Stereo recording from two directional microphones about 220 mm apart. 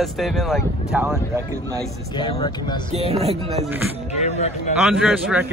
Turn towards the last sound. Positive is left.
turn(degrees=-5)  # may be behind; listen again after turning